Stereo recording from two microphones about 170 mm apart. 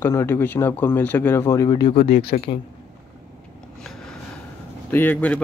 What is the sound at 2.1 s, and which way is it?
Speech, 60° left (ahead or behind).